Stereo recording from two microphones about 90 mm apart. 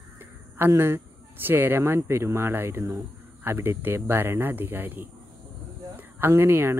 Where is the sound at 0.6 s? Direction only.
25° right (ahead or behind).